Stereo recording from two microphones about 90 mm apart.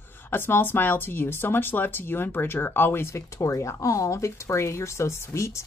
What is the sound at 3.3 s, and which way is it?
Speech, 40° left (ahead or behind).